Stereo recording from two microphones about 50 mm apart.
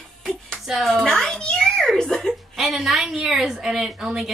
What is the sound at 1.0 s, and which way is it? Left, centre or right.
A child's voice, centre.